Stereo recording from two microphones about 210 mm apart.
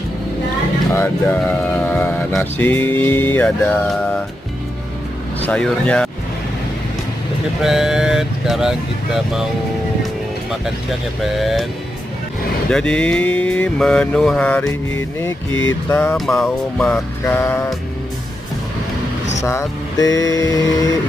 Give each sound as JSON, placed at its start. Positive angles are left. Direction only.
{"t": 0.9, "sound": "speech", "side_deg": 10}
{"t": 5.4, "sound": "mantra", "side_deg": 5}
{"t": 7.6, "sound": "mantra", "side_deg": 0}
{"t": 11.3, "sound": "mantra", "side_deg": 0}
{"t": 12.7, "sound": "mantra", "side_deg": 5}
{"t": 15.9, "sound": "speech", "side_deg": 10}
{"t": 19.4, "sound": "speech", "side_deg": 15}